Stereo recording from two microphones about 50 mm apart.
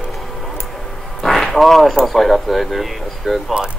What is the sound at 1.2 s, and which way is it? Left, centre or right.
Speech, centre.